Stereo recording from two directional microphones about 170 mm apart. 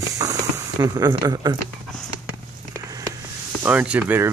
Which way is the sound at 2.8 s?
20° right (ahead or behind).